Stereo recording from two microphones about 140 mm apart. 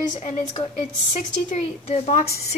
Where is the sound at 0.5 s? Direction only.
35° left (ahead or behind).